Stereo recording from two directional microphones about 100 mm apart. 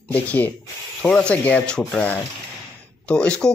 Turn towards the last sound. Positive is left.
turn(degrees=10)  # may be behind; listen again after turning